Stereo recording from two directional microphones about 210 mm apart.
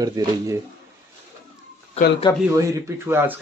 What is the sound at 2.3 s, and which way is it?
Speech, 15° left (ahead or behind).